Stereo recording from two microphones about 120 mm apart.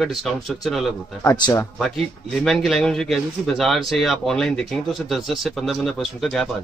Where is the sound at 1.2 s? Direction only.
35° left (ahead or behind).